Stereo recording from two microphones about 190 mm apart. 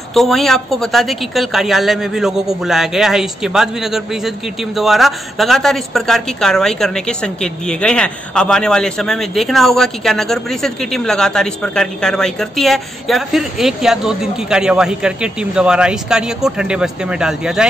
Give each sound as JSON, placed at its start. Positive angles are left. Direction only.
{"t": 0.1, "sound": "a woman's voice", "side_deg": 0}